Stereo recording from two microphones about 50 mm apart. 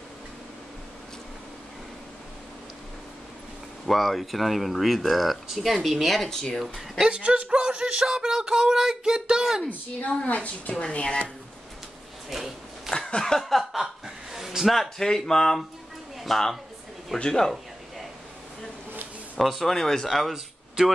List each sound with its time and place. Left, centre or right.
3.8 s speech: centre
7.0 s speech: right
9.7 s speech: left
12.3 s a sound: centre
12.9 s a sound: centre
14.0 s a woman's voice: centre
19.3 s speech: centre